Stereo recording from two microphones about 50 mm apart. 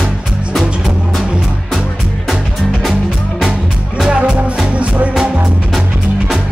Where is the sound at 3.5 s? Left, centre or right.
Centre.